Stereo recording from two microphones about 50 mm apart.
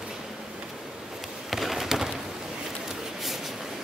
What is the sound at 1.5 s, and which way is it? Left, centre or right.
Fireworks, centre.